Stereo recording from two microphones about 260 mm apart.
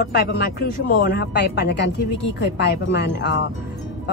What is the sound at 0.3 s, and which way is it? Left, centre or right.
Speech, left.